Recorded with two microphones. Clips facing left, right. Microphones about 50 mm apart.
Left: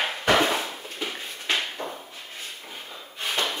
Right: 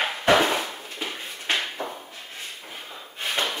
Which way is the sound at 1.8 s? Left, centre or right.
Centre.